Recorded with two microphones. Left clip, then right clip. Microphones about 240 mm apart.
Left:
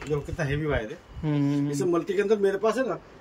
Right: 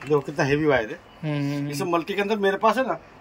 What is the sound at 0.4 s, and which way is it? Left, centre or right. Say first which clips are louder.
Speech: right 8 dB; right.